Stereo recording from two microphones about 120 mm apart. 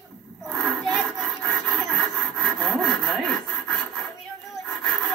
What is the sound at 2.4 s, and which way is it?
Sawing, centre (ahead or behind).